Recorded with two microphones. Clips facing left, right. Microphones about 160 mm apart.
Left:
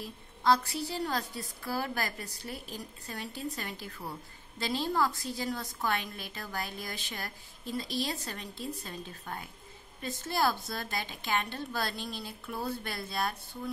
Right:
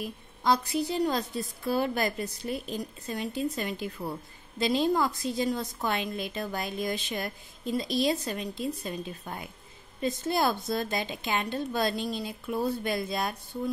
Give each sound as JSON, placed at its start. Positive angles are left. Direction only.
{"t": 0.0, "sound": "a woman's voice", "side_deg": -15}